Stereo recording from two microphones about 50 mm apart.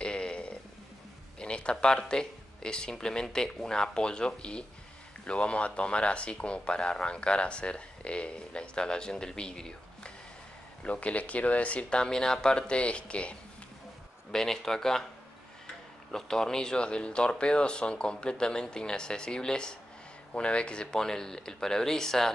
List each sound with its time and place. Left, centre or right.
0.0 s a sound: centre
1.4 s speech: centre
14.3 s speech: centre